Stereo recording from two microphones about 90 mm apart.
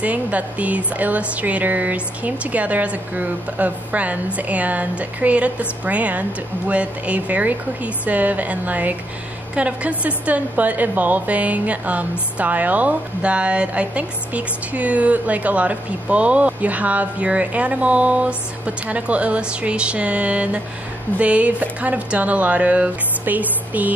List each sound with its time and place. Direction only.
0.0 s a woman's voice: 15° right (ahead or behind)